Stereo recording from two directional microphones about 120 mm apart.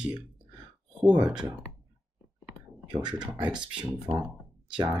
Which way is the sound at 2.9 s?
40° right (ahead or behind).